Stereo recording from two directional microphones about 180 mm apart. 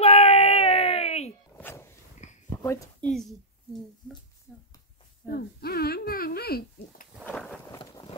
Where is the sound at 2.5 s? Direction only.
15° left (ahead or behind).